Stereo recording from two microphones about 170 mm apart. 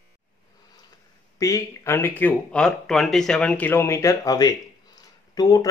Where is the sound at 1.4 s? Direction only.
15° left (ahead or behind).